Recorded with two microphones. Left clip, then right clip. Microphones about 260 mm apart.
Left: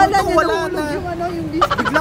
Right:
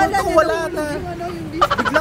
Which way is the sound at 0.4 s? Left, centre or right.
Centre.